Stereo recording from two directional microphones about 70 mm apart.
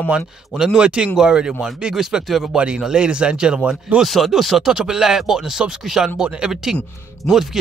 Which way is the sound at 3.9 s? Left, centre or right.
Centre.